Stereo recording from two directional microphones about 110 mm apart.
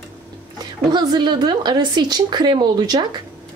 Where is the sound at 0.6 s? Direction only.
40° right (ahead or behind).